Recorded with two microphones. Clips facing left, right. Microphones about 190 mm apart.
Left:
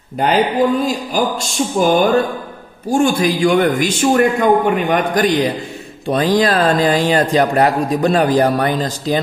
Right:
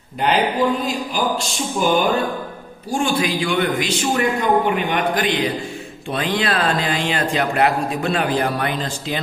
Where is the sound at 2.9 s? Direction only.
45° left (ahead or behind).